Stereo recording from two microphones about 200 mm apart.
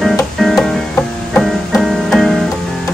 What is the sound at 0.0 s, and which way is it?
Music, centre (ahead or behind).